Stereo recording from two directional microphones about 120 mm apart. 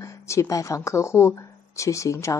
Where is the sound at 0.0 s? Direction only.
25° left (ahead or behind).